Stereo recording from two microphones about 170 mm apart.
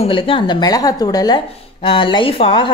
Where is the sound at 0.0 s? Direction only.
30° left (ahead or behind).